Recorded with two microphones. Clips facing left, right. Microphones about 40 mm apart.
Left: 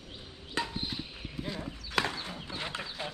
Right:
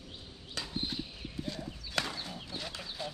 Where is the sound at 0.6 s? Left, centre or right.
Left.